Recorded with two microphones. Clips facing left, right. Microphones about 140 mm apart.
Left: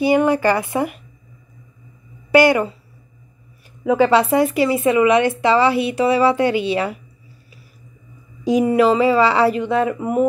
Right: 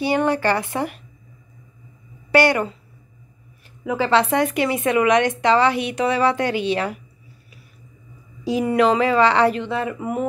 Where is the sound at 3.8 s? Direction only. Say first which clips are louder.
Left 7 dB; 20° left (ahead or behind).